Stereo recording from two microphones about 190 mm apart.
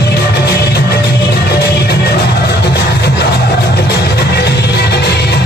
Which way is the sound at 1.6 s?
60° left (ahead or behind).